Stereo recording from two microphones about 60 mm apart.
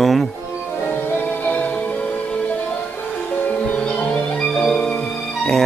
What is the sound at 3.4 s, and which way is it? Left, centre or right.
Music, left.